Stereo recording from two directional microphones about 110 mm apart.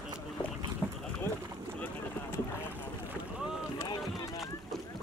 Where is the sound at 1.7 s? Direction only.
15° left (ahead or behind).